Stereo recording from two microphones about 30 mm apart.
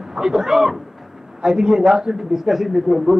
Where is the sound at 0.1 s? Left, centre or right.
Centre.